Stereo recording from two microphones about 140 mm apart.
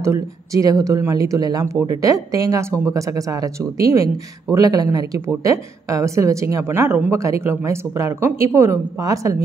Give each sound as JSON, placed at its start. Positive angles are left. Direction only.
{"t": 0.0, "sound": "speech", "side_deg": -20}
{"t": 3.9, "sound": "speech", "side_deg": -25}